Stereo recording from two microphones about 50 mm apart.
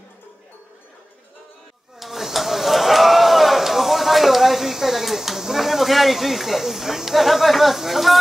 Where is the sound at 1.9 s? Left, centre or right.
Centre.